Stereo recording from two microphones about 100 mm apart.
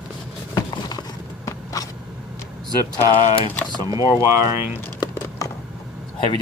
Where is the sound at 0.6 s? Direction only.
40° left (ahead or behind).